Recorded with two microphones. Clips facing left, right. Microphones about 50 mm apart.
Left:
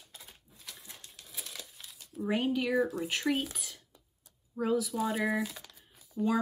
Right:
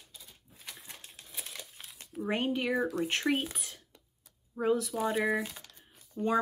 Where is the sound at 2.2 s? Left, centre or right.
Centre.